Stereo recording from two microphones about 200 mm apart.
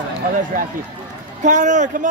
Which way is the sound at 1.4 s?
40° right (ahead or behind).